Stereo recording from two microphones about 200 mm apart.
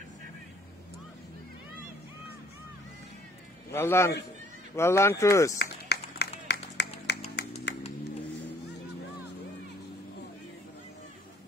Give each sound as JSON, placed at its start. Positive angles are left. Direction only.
{"t": 3.7, "sound": "speech", "side_deg": 10}
{"t": 5.6, "sound": "run", "side_deg": 55}
{"t": 6.4, "sound": "music", "side_deg": 60}